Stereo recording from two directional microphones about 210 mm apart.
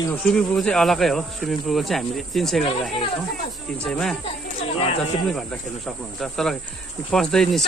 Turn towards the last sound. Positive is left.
turn(degrees=0)  # may be behind; listen again after turning